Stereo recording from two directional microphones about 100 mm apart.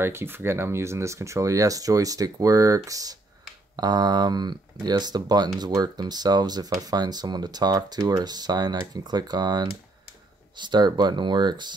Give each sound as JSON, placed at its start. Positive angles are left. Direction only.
{"t": 0.0, "sound": "speech", "side_deg": -25}